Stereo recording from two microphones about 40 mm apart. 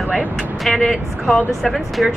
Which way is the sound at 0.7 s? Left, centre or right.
Centre.